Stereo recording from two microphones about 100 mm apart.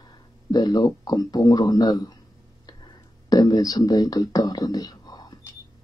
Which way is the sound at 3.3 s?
40° left (ahead or behind).